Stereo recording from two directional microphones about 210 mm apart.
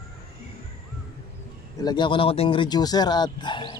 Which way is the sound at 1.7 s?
20° left (ahead or behind).